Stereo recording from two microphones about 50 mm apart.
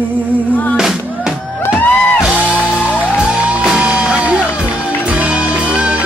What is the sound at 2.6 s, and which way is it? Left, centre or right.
Music, left.